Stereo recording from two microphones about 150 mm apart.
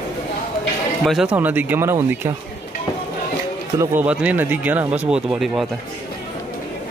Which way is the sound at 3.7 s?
10° right (ahead or behind).